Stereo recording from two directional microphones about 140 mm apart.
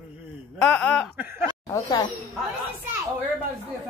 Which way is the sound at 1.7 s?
30° left (ahead or behind).